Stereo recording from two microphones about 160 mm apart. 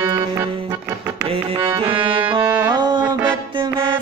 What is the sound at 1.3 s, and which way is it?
Tabla, 35° right (ahead or behind).